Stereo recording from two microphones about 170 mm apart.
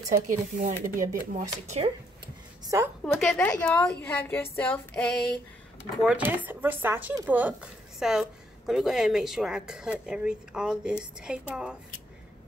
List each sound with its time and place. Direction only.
0.3 s speech: 50° right (ahead or behind)
2.6 s a woman's voice: 20° right (ahead or behind)
3.0 s a woman's voice: centre (ahead or behind)
6.0 s a woman's voice: 10° right (ahead or behind)